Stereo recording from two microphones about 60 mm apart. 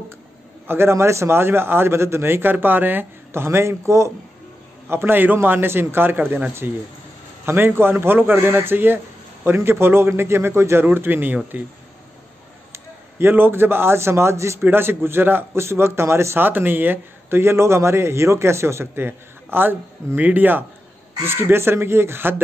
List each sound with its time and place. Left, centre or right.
0.7 s a man's voice: right
4.8 s a man's voice: right
11.0 s a man's voice: right
12.7 s a man's voice: right
14.7 s a man's voice: right
16.4 s a man's voice: right
21.2 s a man's voice: right